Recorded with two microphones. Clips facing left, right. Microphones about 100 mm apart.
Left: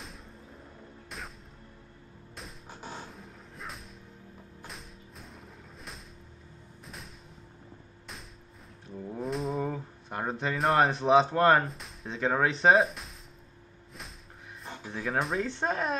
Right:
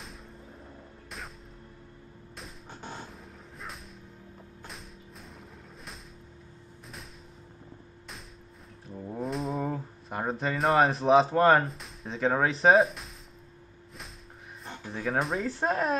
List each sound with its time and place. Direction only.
2.3 s music: 5° left (ahead or behind)
8.9 s speech: 10° right (ahead or behind)
14.6 s speech: centre (ahead or behind)